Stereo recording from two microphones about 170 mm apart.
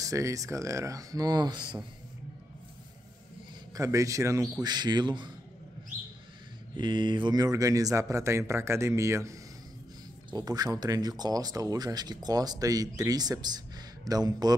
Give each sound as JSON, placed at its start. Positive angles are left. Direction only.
{"t": 0.0, "sound": "speech", "side_deg": -20}
{"t": 3.7, "sound": "speech", "side_deg": -20}
{"t": 6.8, "sound": "speech", "side_deg": -25}